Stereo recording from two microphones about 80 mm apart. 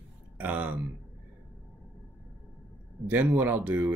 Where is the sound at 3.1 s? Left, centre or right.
Right.